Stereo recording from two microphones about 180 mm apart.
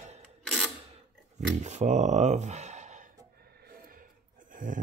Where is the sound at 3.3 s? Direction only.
60° right (ahead or behind).